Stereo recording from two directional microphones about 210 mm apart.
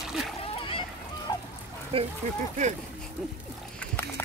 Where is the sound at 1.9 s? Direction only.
25° right (ahead or behind).